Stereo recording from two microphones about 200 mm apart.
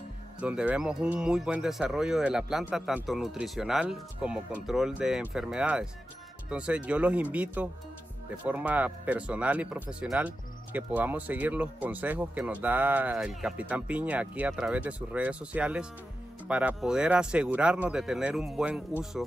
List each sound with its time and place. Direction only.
0.4 s speech: 5° right (ahead or behind)